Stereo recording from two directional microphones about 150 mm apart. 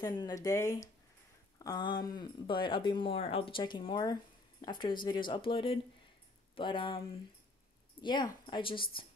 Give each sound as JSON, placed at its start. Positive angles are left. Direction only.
{"t": 0.0, "sound": "speech", "side_deg": 25}
{"t": 8.0, "sound": "speech", "side_deg": 30}